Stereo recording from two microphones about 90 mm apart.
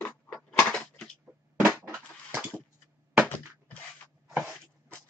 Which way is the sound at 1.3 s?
20° right (ahead or behind).